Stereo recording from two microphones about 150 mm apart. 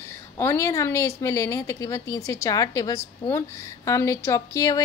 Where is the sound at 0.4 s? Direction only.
20° left (ahead or behind).